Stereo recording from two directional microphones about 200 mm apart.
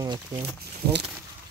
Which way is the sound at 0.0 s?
15° right (ahead or behind).